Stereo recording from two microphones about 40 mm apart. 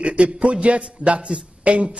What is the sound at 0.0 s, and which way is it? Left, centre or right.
A man's voice, right.